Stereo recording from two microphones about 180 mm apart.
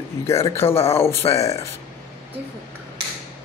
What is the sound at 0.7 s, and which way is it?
Speech, 35° left (ahead or behind).